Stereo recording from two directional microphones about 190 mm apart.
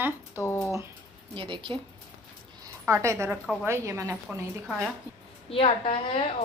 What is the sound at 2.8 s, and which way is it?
A woman's voice, 15° right (ahead or behind).